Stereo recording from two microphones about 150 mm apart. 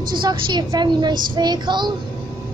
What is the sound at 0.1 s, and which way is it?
A woman's voice, 30° right (ahead or behind).